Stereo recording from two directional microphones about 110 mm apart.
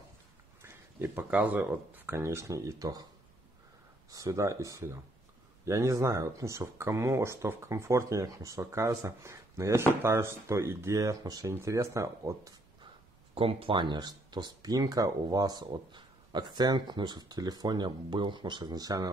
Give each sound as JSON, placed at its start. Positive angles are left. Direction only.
{"t": 0.6, "sound": "a sound", "side_deg": -25}
{"t": 1.3, "sound": "speech", "side_deg": -15}
{"t": 4.1, "sound": "speech", "side_deg": -30}
{"t": 13.3, "sound": "speech", "side_deg": -60}